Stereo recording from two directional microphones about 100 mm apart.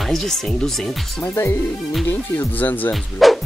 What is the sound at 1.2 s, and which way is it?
Speech, 25° left (ahead or behind).